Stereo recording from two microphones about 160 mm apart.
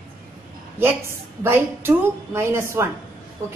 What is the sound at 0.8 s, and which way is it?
A woman's voice, 15° right (ahead or behind).